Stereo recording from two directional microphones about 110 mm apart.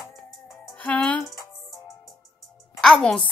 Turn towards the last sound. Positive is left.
turn(degrees=5)  # may be behind; listen again after turning